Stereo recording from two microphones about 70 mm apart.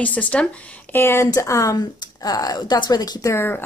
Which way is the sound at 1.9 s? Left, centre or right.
Left.